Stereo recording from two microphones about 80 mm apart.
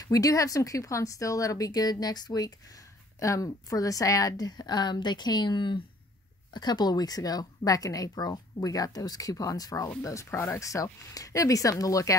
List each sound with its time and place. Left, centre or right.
0.0 s speech: left
3.2 s speech: left
6.5 s speech: left